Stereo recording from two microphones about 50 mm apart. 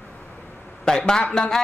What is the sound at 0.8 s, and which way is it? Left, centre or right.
Speech, centre.